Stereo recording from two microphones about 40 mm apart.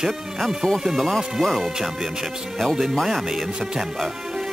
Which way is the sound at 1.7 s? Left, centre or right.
Centre.